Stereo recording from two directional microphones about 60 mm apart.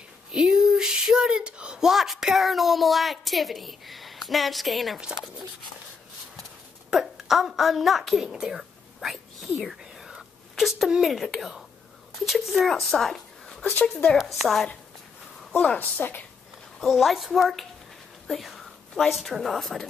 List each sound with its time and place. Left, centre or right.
0.3 s speech: centre
5.0 s speech: centre
6.9 s a woman's voice: centre
9.1 s whispering: centre
10.5 s a woman's voice: centre
14.1 s speech: centre
15.8 s a woman's voice: left
16.8 s a woman's voice: centre